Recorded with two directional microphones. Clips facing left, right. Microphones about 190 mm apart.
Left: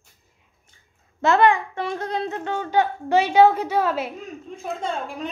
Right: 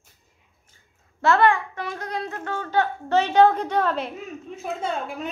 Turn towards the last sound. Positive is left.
turn(degrees=-5)  # may be behind; listen again after turning